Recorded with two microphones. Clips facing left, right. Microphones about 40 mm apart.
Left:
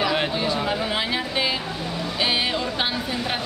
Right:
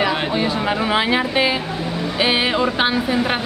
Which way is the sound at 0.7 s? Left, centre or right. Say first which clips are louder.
Right 6 dB; right.